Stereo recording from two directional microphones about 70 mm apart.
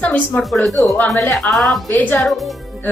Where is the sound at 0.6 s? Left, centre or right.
Centre.